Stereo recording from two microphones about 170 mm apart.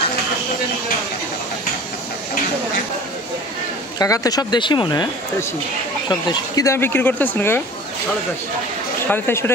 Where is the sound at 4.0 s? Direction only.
20° left (ahead or behind).